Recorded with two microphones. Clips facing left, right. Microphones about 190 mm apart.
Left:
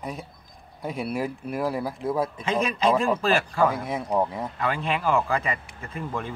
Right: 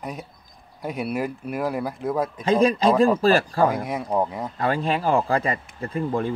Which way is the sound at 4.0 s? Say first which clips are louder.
Left 2 dB; 5° right (ahead or behind).